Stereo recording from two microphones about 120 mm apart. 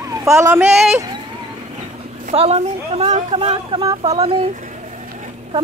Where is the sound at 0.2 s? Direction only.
25° right (ahead or behind).